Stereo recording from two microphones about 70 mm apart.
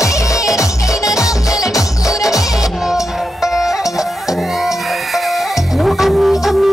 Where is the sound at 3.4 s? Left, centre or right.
Centre.